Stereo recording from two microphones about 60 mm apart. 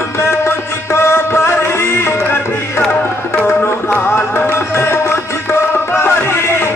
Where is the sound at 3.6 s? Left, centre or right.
Left.